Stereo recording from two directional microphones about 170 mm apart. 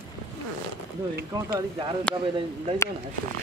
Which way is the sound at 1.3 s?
20° right (ahead or behind).